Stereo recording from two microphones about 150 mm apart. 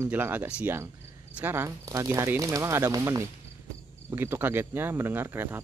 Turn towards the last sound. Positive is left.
turn(degrees=-15)  # may be behind; listen again after turning